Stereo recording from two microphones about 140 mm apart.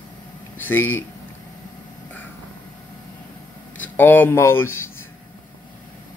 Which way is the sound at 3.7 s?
15° left (ahead or behind).